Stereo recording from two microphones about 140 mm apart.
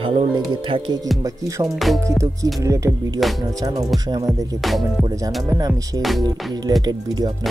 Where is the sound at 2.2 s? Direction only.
20° right (ahead or behind).